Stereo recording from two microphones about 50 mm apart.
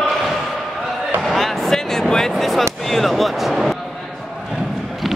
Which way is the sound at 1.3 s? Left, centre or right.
Centre.